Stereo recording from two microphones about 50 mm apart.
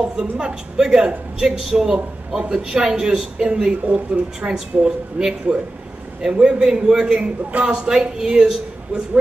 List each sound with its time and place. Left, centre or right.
0.1 s speech: centre
6.4 s speech: centre